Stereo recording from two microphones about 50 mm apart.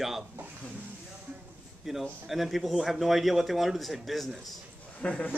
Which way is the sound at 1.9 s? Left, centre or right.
Centre.